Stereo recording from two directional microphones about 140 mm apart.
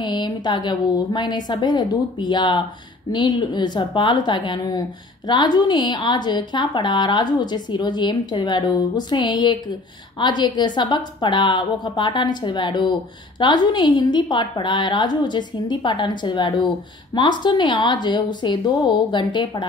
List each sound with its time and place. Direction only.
0.0 s a woman's voice: 30° left (ahead or behind)